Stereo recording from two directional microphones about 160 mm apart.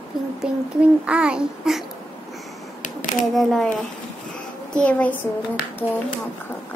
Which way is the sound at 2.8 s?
55° left (ahead or behind).